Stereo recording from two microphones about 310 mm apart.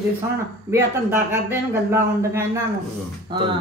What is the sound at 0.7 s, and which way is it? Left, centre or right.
Speech, centre.